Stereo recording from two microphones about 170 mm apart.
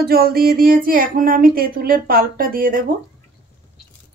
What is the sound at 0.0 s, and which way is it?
Speech, 65° right (ahead or behind).